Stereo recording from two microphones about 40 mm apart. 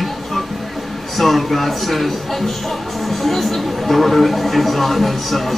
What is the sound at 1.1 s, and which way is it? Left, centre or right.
Speech, centre.